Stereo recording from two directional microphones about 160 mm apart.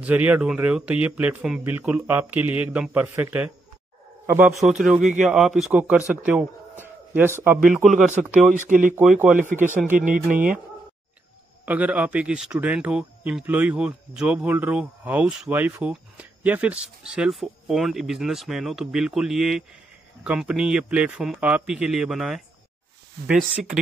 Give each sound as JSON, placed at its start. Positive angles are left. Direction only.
{"t": 0.0, "sound": "speech", "side_deg": -10}
{"t": 4.6, "sound": "speech", "side_deg": -5}
{"t": 8.5, "sound": "speech", "side_deg": -55}
{"t": 9.9, "sound": "speech", "side_deg": -55}
{"t": 11.6, "sound": "speech", "side_deg": -10}